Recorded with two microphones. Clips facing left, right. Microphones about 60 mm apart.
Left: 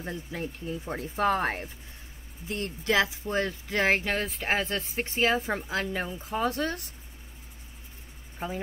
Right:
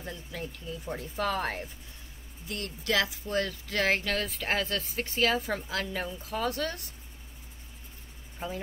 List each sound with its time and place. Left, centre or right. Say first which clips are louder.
0.0 s speech: left 4 dB; left
8.4 s speech: left 2 dB; centre